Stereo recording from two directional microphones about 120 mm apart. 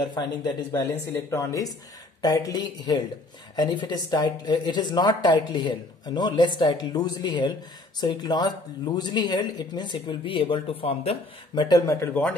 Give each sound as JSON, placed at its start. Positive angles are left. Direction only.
{"t": 0.7, "sound": "a woman's voice", "side_deg": 20}
{"t": 11.5, "sound": "a woman's voice", "side_deg": 40}
{"t": 11.8, "sound": "speech", "side_deg": 25}